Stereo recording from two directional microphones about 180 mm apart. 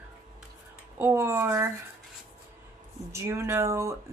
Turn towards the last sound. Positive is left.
turn(degrees=-15)  # may be behind; listen again after turning